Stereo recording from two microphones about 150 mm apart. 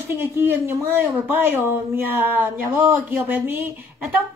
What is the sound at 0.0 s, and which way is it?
Speech, 15° right (ahead or behind).